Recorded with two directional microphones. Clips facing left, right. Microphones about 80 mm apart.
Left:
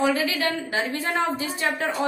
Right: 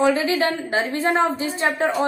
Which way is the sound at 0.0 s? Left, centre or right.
Right.